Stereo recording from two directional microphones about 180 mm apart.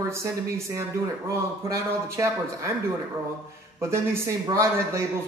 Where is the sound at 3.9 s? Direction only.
15° right (ahead or behind).